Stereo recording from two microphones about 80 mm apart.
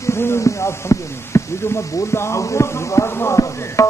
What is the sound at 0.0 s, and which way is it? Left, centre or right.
Speech, left.